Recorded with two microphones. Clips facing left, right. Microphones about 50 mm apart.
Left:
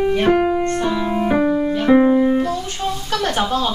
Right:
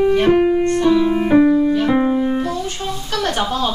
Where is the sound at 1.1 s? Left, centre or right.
Centre.